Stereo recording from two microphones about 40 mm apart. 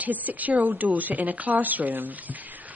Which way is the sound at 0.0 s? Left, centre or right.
Right.